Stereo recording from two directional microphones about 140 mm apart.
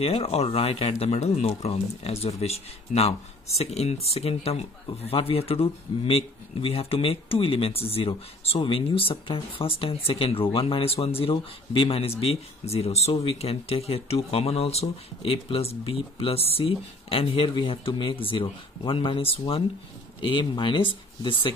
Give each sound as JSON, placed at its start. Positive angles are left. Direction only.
{"t": 0.0, "sound": "speech", "side_deg": 45}